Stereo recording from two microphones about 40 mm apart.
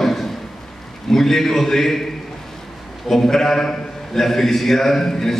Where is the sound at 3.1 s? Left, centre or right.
Centre.